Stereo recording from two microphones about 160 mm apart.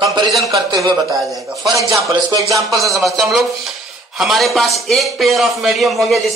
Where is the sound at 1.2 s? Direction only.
Centre (ahead or behind).